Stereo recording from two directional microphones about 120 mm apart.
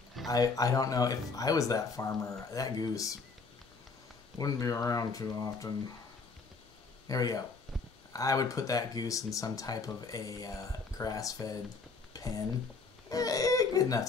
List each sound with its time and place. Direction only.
0.3 s speech: 30° left (ahead or behind)
4.4 s speech: 30° left (ahead or behind)
7.1 s speech: 30° left (ahead or behind)
12.1 s a sound: 30° left (ahead or behind)
13.1 s speech: 30° left (ahead or behind)